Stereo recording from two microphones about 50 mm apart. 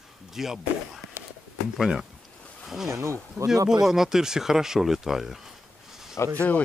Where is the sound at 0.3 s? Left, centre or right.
Centre.